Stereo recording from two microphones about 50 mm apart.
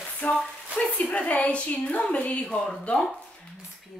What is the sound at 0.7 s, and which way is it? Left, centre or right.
A woman's voice, left.